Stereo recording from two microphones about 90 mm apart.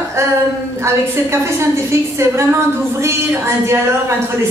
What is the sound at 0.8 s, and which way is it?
A man's voice, 30° right (ahead or behind).